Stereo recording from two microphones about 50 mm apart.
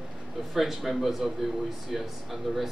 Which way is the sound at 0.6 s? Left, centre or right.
Centre.